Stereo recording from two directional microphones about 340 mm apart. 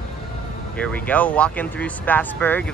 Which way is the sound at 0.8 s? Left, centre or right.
Centre.